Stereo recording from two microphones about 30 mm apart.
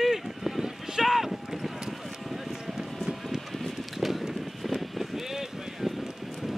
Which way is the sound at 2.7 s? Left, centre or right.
Centre.